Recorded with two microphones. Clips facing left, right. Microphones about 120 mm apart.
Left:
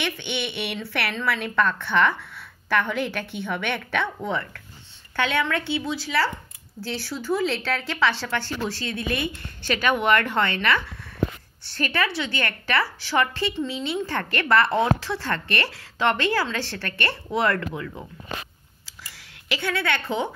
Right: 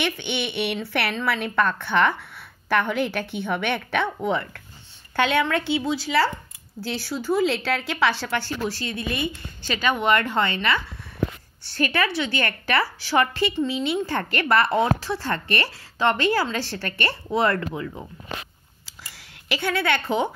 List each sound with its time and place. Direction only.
0.0 s a woman's voice: 15° right (ahead or behind)
19.5 s a woman's voice: 10° right (ahead or behind)